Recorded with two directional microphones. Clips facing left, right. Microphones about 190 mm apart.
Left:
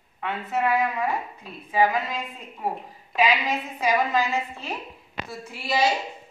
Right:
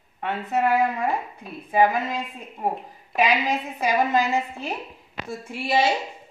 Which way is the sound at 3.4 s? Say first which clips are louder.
Right 1 dB; 30° right (ahead or behind).